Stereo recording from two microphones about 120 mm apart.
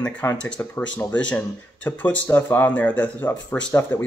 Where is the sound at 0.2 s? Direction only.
10° left (ahead or behind).